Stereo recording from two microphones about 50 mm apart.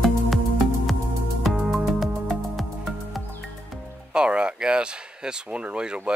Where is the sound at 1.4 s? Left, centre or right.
Centre.